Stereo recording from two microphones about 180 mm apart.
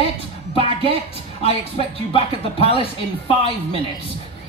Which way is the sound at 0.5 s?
30° left (ahead or behind).